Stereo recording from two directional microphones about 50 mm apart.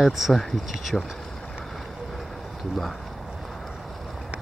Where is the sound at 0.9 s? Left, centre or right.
Centre.